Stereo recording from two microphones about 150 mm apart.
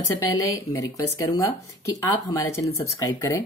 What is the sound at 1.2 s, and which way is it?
Speech, 20° left (ahead or behind).